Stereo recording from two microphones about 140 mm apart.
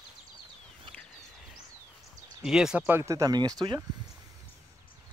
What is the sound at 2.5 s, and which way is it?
Speech, 5° right (ahead or behind).